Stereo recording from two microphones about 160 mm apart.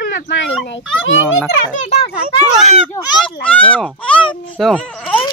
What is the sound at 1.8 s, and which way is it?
Speech, 40° left (ahead or behind).